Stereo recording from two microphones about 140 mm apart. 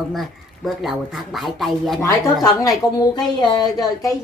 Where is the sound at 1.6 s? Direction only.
Centre (ahead or behind).